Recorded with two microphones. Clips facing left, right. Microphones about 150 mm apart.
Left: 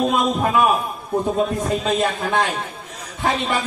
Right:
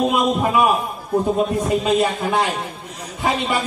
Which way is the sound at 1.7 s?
10° right (ahead or behind).